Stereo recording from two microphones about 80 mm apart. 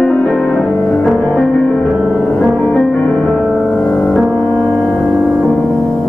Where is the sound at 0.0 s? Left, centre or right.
Centre.